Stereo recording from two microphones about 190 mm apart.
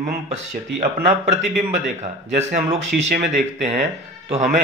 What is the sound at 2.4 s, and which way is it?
Speech, 35° right (ahead or behind).